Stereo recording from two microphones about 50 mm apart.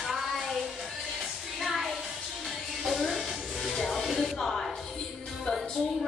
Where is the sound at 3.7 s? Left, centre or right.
Centre.